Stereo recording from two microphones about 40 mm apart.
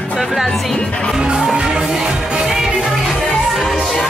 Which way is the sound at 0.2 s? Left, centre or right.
Centre.